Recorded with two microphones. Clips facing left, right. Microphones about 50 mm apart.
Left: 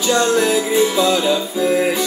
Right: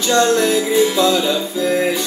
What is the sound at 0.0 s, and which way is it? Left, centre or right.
Music, centre.